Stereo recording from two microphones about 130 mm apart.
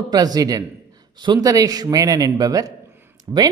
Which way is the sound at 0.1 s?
30° right (ahead or behind).